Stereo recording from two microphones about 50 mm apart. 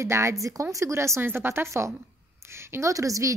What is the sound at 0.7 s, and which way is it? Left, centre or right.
Speech, right.